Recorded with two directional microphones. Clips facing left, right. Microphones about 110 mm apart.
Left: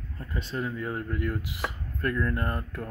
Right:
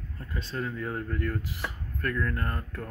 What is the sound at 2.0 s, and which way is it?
Speech, 20° left (ahead or behind).